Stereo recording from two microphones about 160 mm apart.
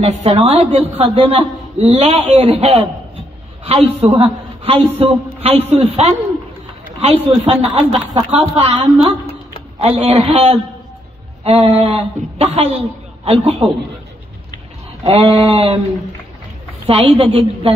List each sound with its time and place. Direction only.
0.2 s a man's voice: 40° right (ahead or behind)
15.0 s a man's voice: 40° right (ahead or behind)
16.8 s a man's voice: 35° right (ahead or behind)